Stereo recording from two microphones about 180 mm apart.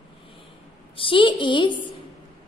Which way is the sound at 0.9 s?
30° left (ahead or behind).